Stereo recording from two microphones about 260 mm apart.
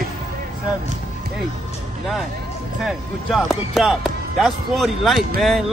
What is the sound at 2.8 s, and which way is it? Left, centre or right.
Speech, centre.